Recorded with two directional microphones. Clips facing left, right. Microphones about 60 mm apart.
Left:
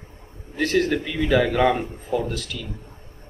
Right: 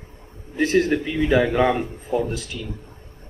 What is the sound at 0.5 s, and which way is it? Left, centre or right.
Speech, centre.